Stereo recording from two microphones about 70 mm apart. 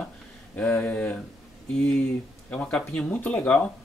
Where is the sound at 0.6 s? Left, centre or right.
Left.